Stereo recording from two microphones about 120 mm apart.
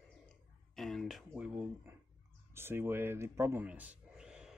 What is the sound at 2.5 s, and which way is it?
Speech, 20° right (ahead or behind).